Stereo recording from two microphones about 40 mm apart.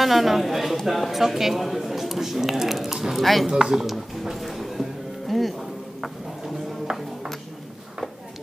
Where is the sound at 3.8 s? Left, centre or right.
Centre.